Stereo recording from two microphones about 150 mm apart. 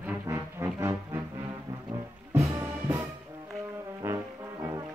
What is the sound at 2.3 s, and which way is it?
Music, 15° right (ahead or behind).